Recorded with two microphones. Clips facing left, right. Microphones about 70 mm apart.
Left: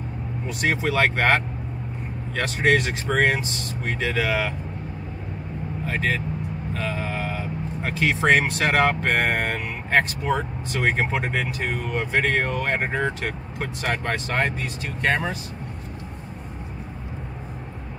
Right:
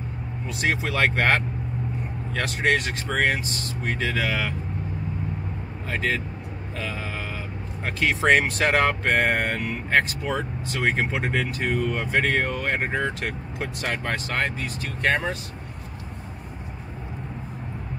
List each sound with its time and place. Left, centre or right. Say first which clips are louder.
0.5 s speech: left 2 dB; centre
5.9 s speech: left 1 dB; centre